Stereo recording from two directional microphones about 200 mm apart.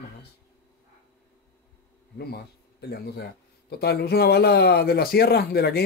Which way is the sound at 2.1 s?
55° left (ahead or behind).